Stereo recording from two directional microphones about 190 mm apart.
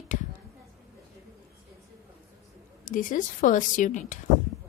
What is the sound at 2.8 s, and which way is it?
A woman's voice, 45° left (ahead or behind).